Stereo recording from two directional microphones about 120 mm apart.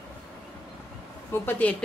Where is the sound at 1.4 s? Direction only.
15° left (ahead or behind).